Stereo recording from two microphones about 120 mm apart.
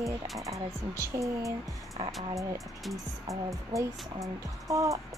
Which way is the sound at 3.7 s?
25° right (ahead or behind).